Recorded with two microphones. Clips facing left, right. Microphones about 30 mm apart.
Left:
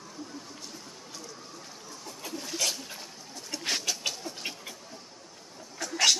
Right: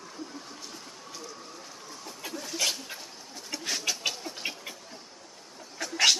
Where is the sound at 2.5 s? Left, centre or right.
Centre.